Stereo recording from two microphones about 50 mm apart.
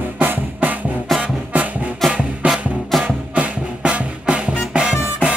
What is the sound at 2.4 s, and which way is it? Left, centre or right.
Music, right.